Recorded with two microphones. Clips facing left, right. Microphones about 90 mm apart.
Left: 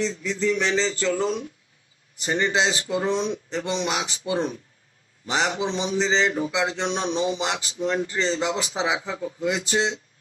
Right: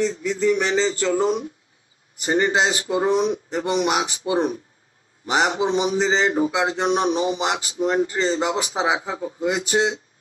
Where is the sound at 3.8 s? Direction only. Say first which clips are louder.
Right 5 dB; 50° right (ahead or behind).